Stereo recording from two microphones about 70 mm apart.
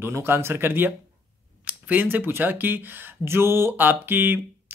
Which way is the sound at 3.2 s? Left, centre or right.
Right.